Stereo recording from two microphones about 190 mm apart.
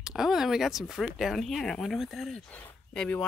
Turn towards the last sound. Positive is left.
turn(degrees=5)  # may be behind; listen again after turning